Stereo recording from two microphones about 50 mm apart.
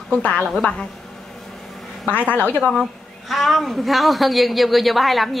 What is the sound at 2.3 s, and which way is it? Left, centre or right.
Speech, left.